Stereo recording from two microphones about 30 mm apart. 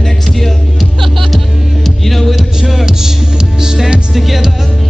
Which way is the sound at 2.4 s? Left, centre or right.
Centre.